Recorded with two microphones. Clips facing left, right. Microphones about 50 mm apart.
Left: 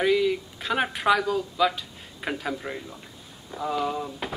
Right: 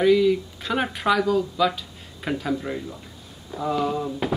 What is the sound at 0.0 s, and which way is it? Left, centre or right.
Speech, centre.